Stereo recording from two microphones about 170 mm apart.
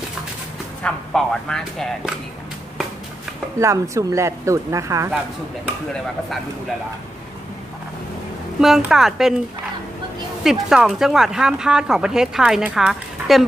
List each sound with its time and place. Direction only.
0.8 s speech: 5° left (ahead or behind)
3.5 s speech: 20° right (ahead or behind)
8.5 s speech: centre (ahead or behind)
10.4 s speech: 5° right (ahead or behind)